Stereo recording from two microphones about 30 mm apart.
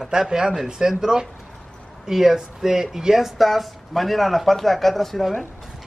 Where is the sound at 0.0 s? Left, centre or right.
Centre.